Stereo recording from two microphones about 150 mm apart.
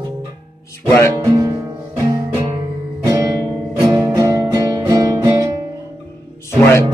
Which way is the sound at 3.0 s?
20° right (ahead or behind).